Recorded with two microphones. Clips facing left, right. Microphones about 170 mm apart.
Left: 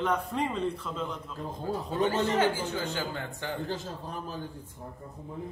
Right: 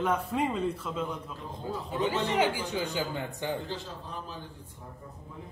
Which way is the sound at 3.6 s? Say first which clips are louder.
Left 3 dB; 45° left (ahead or behind).